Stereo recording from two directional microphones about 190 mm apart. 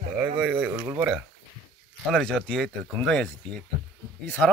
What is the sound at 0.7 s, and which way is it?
Speech, 20° right (ahead or behind).